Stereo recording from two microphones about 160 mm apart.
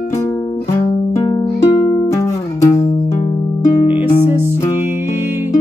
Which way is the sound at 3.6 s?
30° left (ahead or behind).